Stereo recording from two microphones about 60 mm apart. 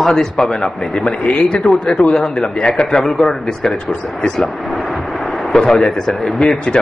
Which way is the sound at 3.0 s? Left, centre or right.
Centre.